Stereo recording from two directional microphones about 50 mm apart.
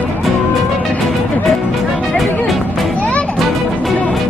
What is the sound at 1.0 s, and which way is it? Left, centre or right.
Music, centre.